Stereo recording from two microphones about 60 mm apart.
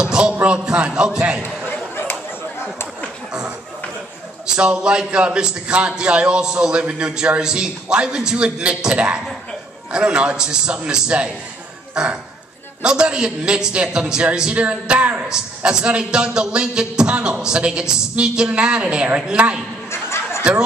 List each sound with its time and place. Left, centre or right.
0.0 s a man's voice: centre
4.5 s a man's voice: centre
19.9 s a sound: left